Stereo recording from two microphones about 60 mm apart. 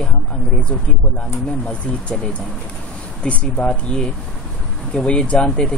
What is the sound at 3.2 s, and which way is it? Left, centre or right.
Speech, left.